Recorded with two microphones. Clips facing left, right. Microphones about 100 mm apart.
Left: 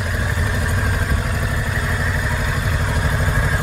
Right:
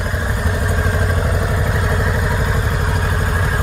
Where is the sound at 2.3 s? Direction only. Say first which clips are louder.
Right 3 dB; 20° right (ahead or behind).